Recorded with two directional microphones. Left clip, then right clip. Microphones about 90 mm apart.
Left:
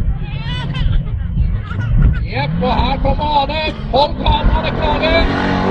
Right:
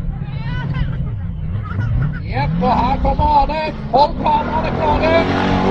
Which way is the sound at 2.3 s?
5° left (ahead or behind).